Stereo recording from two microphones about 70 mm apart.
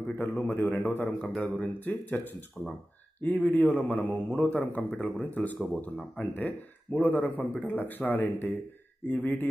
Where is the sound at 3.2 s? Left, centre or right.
Left.